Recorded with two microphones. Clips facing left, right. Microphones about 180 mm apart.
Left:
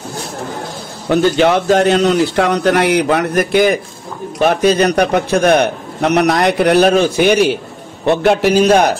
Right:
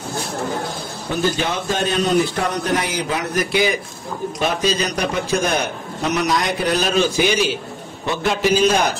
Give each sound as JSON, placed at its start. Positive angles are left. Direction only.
{"t": 1.0, "sound": "a man's voice", "side_deg": 75}